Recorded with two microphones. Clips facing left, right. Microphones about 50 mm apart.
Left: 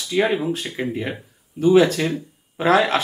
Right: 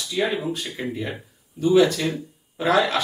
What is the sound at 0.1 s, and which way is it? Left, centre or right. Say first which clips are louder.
Speech: left 5 dB; left.